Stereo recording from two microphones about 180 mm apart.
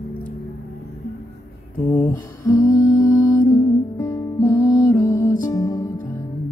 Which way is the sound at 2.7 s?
20° left (ahead or behind).